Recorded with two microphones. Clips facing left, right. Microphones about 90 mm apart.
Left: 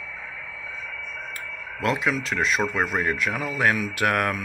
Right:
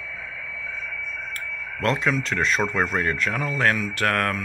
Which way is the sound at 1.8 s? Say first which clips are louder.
Right 1 dB; 5° left (ahead or behind).